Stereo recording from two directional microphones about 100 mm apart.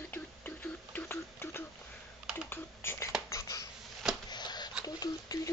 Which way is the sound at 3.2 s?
35° left (ahead or behind).